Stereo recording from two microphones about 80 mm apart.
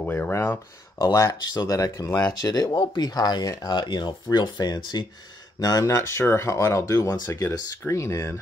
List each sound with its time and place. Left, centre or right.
0.0 s speech: left
0.9 s speech: left
3.7 s speech: left
5.6 s speech: left
5.9 s speech: left